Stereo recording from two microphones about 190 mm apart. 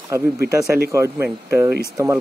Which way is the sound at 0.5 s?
15° right (ahead or behind).